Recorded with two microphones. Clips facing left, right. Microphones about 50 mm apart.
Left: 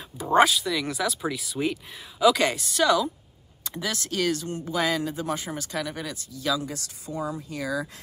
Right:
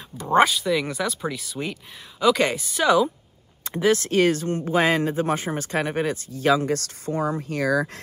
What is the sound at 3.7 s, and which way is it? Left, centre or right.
Speech, right.